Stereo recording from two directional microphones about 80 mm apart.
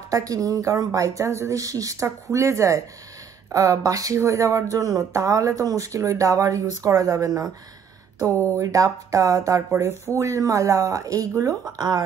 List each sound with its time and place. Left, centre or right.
0.1 s speech: right